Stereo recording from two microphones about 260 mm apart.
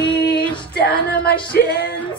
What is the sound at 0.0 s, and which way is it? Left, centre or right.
Female singing, left.